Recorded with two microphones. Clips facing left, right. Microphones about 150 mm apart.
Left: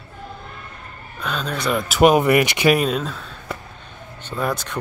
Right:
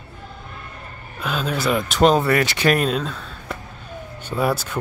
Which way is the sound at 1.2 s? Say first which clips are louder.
Right 2 dB; 5° right (ahead or behind).